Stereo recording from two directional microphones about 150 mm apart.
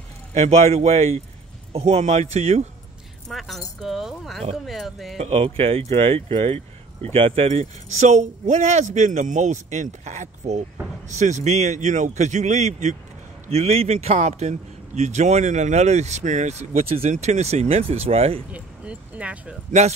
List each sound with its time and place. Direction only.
0.3 s speech: 45° right (ahead or behind)
3.3 s speech: centre (ahead or behind)
5.1 s speech: 45° right (ahead or behind)
18.5 s speech: 10° right (ahead or behind)